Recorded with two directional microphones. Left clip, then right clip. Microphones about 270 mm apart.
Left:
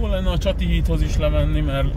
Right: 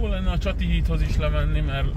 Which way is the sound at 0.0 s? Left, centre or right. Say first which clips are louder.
Left 6 dB; centre.